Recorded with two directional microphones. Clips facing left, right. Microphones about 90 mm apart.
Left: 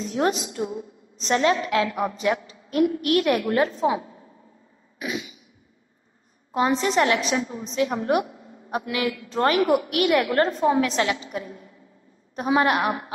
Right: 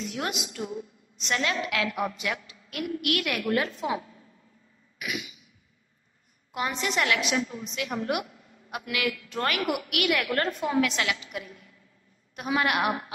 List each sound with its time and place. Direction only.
0.0 s a woman's voice: 35° left (ahead or behind)
4.9 s cough: 30° left (ahead or behind)
6.5 s a woman's voice: 35° left (ahead or behind)